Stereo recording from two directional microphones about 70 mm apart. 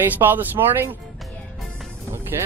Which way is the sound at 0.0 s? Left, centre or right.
Right.